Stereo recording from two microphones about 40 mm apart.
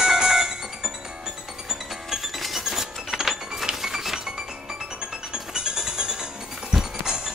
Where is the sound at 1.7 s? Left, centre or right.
Centre.